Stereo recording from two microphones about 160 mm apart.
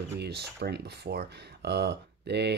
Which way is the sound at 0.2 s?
90° right.